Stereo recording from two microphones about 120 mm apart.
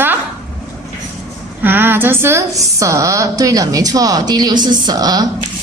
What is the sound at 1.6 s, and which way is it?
Speech, 15° right (ahead or behind).